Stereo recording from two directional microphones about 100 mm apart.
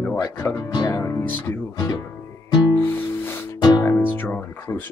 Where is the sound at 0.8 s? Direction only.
30° left (ahead or behind).